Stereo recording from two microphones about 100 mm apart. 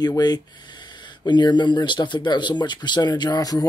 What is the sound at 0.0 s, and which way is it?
Speech, 40° left (ahead or behind).